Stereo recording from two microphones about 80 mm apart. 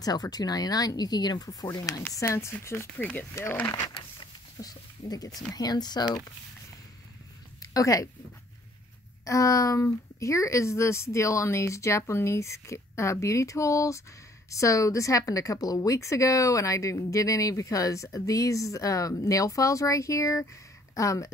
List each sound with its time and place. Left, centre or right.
0.0 s a woman's voice: left
3.0 s speech: centre
4.6 s speech: left
7.6 s a woman's voice: left
9.2 s a woman's voice: left